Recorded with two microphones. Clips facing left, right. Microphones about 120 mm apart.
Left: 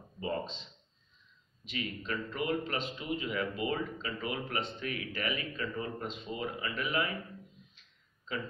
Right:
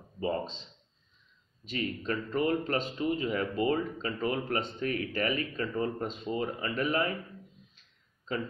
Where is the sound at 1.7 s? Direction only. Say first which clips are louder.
Right 4 dB; 40° right (ahead or behind).